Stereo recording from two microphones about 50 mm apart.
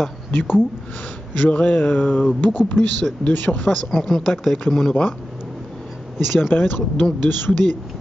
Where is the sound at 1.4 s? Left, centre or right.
Left.